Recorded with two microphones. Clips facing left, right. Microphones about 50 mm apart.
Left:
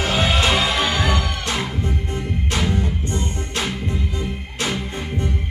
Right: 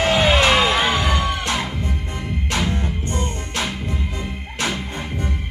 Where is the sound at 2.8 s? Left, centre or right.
Right.